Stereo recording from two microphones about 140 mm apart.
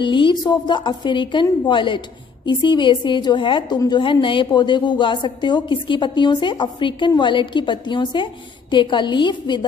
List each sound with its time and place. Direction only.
0.0 s a woman's voice: 35° left (ahead or behind)